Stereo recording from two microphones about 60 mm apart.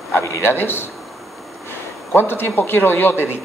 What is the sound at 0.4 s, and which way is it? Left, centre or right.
A man's voice, left.